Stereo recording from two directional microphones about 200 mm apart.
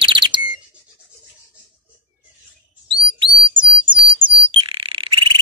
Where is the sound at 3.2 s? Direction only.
25° right (ahead or behind).